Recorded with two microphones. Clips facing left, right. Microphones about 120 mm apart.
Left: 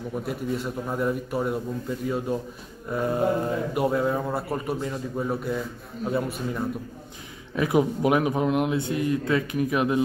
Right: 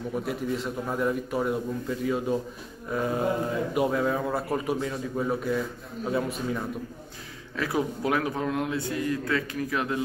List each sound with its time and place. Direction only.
0.1 s a man's voice: centre (ahead or behind)
7.5 s a man's voice: 20° left (ahead or behind)